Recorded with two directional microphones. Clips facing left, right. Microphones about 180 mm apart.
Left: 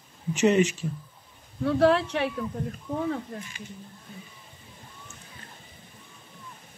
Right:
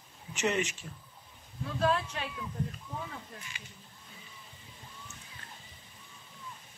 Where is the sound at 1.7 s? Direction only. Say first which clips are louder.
Left 9 dB; 75° left (ahead or behind).